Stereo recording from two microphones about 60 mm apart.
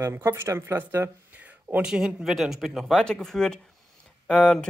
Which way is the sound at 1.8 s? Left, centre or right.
Centre.